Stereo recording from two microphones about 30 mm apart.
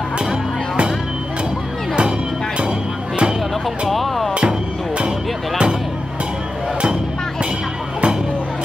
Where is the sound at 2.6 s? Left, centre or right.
Right.